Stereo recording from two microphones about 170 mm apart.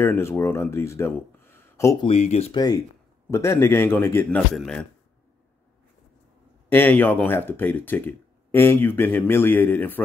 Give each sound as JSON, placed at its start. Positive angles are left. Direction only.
{"t": 0.0, "sound": "speech", "side_deg": 15}
{"t": 2.0, "sound": "speech", "side_deg": 40}
{"t": 2.5, "sound": "speech", "side_deg": 25}
{"t": 6.7, "sound": "speech", "side_deg": 10}